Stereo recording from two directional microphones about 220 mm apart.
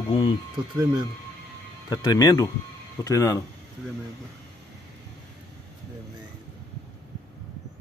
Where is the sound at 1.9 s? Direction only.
15° left (ahead or behind).